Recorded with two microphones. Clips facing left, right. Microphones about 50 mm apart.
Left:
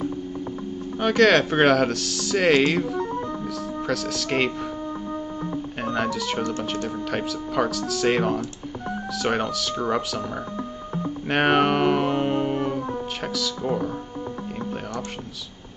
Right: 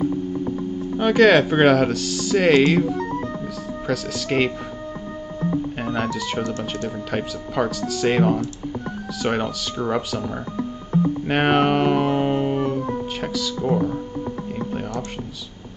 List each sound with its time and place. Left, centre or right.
0.0 s speech: centre
3.0 s music: right
3.8 s speech: centre
5.8 s music: centre
7.1 s speech: centre
11.2 s music: centre
13.2 s speech: centre